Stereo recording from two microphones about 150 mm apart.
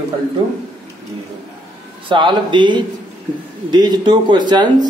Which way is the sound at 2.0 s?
30° right (ahead or behind).